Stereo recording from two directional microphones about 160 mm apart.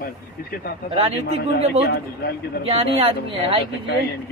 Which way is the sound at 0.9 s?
35° right (ahead or behind).